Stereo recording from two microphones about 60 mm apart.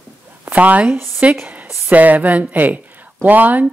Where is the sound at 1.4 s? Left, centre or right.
Right.